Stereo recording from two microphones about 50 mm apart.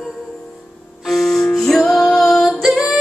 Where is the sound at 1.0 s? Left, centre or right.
Centre.